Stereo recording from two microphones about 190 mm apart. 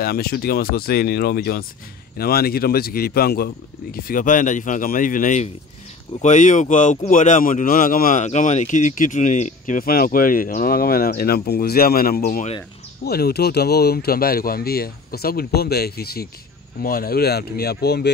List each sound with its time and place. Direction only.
0.0 s a man's voice: 55° left (ahead or behind)
12.2 s speech: 40° left (ahead or behind)
13.0 s speech: 55° left (ahead or behind)